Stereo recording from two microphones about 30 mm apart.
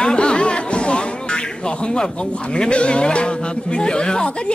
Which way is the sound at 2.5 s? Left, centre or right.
Left.